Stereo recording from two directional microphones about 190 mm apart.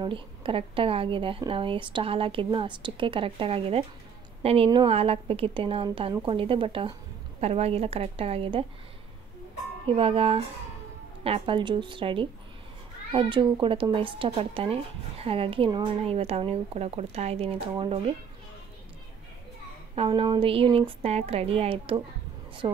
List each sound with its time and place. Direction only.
0.0 s speech: 25° right (ahead or behind)
9.8 s speech: 30° right (ahead or behind)
20.0 s speech: 25° right (ahead or behind)